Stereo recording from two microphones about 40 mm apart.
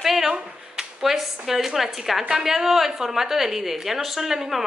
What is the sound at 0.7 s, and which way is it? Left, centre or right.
A woman's voice, centre.